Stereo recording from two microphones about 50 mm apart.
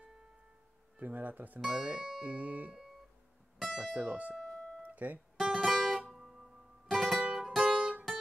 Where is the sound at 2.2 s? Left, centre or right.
Right.